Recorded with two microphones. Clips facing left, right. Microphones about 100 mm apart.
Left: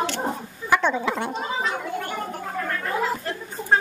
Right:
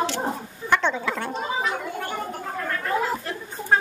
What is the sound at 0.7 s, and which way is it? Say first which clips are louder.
Speech: left 1 dB; 10° left (ahead or behind).